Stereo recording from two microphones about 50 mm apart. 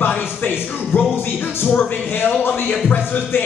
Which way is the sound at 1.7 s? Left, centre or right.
Left.